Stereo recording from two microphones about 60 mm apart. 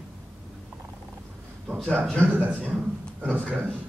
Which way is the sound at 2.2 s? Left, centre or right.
Right.